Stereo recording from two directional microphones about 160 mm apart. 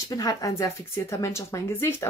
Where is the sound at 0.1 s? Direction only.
20° left (ahead or behind).